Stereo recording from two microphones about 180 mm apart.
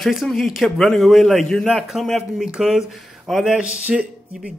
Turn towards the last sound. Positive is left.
turn(degrees=-5)  # may be behind; listen again after turning